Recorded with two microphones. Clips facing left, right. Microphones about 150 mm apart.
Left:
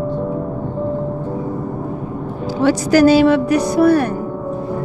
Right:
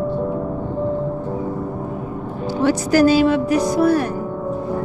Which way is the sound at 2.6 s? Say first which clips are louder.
Left 3 dB; 85° left.